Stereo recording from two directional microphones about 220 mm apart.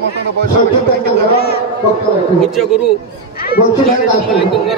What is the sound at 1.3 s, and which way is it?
Speech, 45° left (ahead or behind).